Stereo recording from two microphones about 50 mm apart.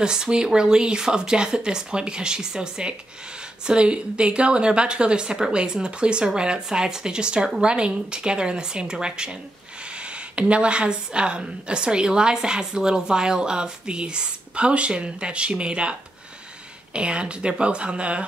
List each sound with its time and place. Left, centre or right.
0.0 s a woman's voice: centre
10.3 s a woman's voice: right